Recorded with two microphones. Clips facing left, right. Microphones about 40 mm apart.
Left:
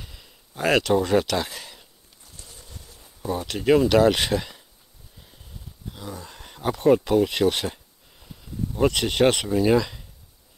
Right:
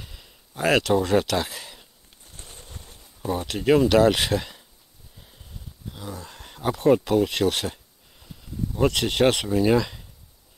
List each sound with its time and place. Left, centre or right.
0.0 s a sound: centre
2.2 s bird: right
3.4 s speech: centre
5.9 s speech: centre